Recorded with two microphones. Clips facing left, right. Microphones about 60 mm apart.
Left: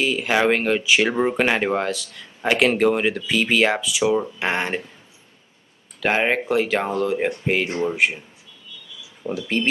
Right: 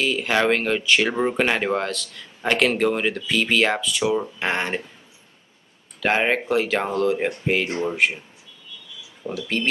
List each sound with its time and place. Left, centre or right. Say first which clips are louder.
0.0 s speech: left 1 dB; centre
5.9 s speech: even; centre
9.2 s speech: left 2 dB; centre